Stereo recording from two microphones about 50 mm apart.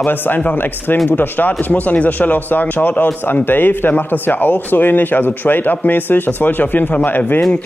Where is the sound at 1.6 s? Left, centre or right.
Left.